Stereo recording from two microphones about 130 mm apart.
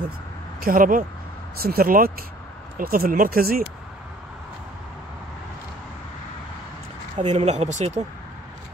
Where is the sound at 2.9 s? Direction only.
90° right.